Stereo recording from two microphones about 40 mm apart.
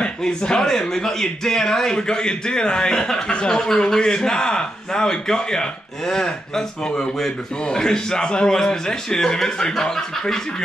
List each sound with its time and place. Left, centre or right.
0.0 s a man's voice: centre